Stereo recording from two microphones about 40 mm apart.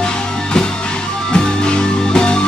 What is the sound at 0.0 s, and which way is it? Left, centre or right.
Music, left.